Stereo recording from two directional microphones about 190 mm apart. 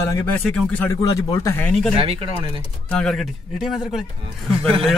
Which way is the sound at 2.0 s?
30° right (ahead or behind).